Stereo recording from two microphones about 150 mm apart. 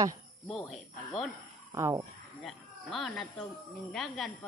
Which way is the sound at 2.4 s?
Centre (ahead or behind).